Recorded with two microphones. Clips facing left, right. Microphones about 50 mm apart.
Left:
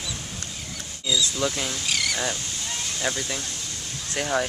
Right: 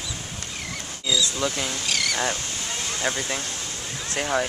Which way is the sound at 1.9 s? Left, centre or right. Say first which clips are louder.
Right 1 dB; centre.